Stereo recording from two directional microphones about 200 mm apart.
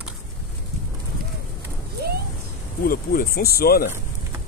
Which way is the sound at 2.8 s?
45° left (ahead or behind).